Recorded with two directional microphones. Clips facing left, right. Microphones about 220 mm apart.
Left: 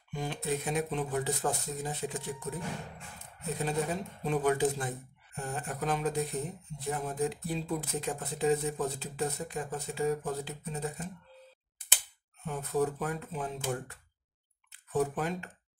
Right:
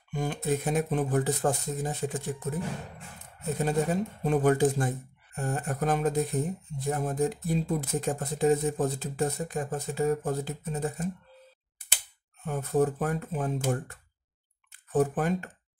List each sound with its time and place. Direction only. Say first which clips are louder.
0.1 s speech: right 5 dB; 50° right (ahead or behind)
3.5 s speech: right 5 dB; 45° right (ahead or behind)
12.4 s speech: right 5 dB; 45° right (ahead or behind)